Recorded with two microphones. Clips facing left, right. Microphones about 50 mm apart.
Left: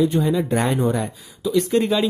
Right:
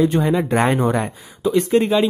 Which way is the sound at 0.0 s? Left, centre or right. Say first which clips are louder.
Right 2 dB; right.